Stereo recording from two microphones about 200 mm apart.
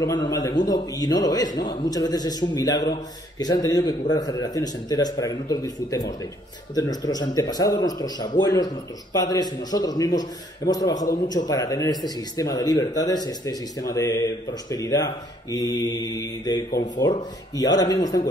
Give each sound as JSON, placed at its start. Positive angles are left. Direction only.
{"t": 0.4, "sound": "speech", "side_deg": 20}
{"t": 16.7, "sound": "speech", "side_deg": 40}
{"t": 17.6, "sound": "speech", "side_deg": 20}